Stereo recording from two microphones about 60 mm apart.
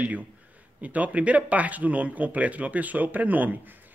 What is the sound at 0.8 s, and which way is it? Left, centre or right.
Speech, right.